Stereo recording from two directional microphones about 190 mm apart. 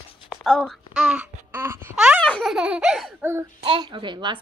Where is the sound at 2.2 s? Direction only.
5° left (ahead or behind).